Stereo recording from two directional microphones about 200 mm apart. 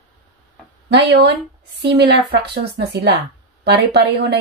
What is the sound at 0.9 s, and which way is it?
A woman's voice, 60° right (ahead or behind).